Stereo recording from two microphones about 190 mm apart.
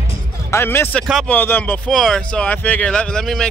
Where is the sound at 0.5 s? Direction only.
10° left (ahead or behind).